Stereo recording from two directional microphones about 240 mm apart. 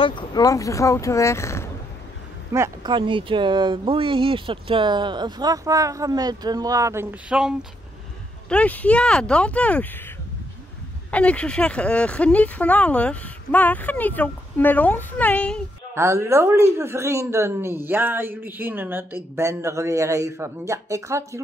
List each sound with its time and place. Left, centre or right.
0.0 s speech: centre
2.5 s speech: centre
11.1 s speech: centre
15.9 s speech: centre